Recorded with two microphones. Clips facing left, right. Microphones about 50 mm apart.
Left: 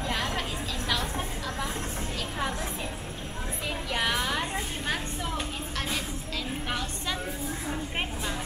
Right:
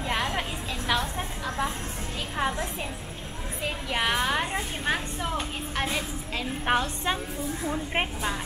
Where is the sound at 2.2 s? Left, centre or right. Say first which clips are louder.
Right 5 dB; right.